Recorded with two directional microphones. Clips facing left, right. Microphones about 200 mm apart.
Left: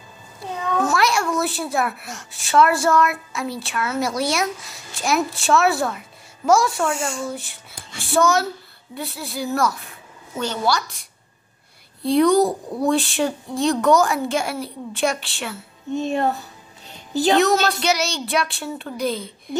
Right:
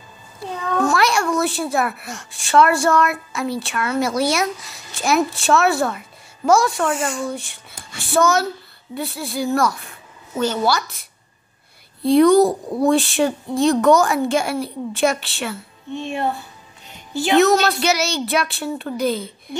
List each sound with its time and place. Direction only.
0.7 s a child's voice: centre (ahead or behind)
12.0 s a child's voice: centre (ahead or behind)
15.9 s a woman's voice: 40° left (ahead or behind)
17.4 s a child's voice: centre (ahead or behind)